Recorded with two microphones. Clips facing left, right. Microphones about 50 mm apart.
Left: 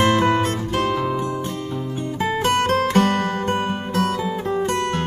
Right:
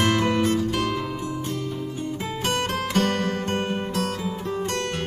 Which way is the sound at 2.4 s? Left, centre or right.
Left.